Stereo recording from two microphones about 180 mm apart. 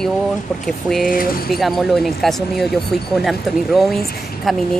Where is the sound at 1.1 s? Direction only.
55° left (ahead or behind).